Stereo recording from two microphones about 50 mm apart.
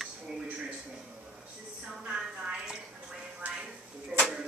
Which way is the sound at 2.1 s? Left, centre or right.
Right.